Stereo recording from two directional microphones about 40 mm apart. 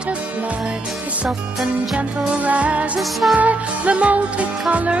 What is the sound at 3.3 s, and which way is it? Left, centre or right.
Music, right.